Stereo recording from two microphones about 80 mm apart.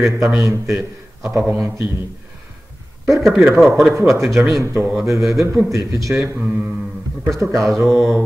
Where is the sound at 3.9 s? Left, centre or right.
Right.